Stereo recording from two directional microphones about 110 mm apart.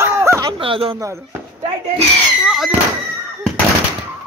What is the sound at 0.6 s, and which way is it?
Speech, 55° right (ahead or behind).